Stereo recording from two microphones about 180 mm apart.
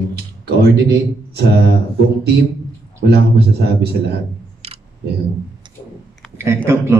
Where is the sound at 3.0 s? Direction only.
65° right (ahead or behind).